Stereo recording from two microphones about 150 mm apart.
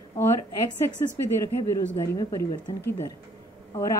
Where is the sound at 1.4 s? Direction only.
20° left (ahead or behind).